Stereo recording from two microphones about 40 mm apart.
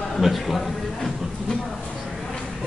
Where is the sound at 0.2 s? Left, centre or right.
Centre.